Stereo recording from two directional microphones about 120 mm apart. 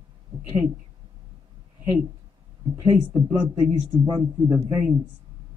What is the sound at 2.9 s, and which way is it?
Speech, 15° right (ahead or behind).